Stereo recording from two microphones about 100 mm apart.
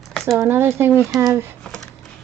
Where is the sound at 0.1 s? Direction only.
Centre (ahead or behind).